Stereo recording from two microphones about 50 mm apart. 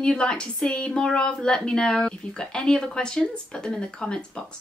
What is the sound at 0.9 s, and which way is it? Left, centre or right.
A woman's voice, centre.